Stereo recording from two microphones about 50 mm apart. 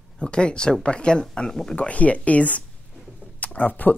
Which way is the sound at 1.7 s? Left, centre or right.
Left.